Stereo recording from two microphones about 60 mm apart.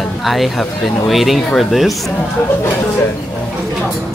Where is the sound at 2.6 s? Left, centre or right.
Left.